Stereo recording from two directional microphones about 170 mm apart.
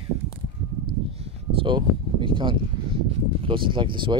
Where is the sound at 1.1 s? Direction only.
35° right (ahead or behind).